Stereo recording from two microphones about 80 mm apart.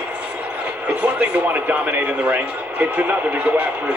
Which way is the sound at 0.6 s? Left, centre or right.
Centre.